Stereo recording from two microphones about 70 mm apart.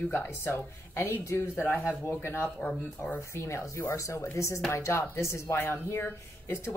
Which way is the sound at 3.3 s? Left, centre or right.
Left.